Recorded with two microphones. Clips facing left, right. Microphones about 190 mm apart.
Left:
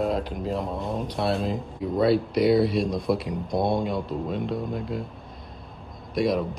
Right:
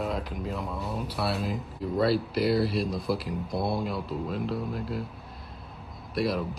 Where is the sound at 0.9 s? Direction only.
5° right (ahead or behind).